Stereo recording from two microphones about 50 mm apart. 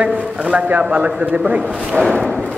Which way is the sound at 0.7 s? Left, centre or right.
Right.